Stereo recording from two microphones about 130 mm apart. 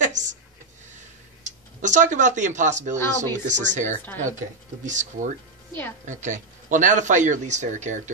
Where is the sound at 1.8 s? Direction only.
70° right (ahead or behind).